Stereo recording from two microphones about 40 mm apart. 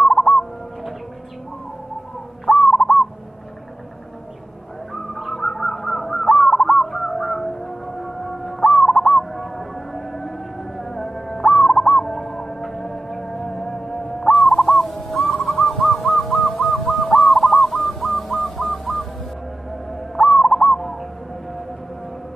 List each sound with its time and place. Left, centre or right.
0.0 s bird: centre
2.5 s bird: centre
4.9 s bird: centre
8.0 s music: centre
8.5 s owl: centre
10.8 s music: centre
11.4 s owl: centre
11.9 s music: centre
14.8 s owl: centre
17.3 s bird: centre
20.2 s bird: centre